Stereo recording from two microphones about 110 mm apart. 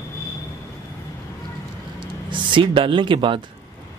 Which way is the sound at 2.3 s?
50° right (ahead or behind).